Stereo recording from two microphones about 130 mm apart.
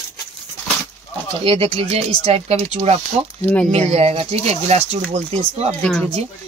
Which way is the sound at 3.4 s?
10° left (ahead or behind).